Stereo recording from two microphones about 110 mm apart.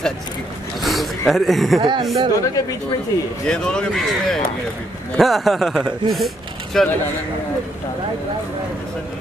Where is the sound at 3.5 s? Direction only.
5° left (ahead or behind).